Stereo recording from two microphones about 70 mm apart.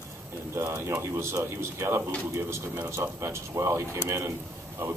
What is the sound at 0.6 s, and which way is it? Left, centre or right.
Speech, right.